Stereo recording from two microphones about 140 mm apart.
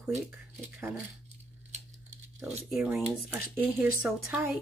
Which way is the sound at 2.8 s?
10° right (ahead or behind).